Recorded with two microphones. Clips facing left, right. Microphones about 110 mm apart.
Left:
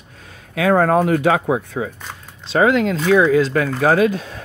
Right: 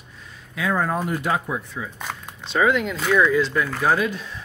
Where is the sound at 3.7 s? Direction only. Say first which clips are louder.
Left 7 dB; 75° left (ahead or behind).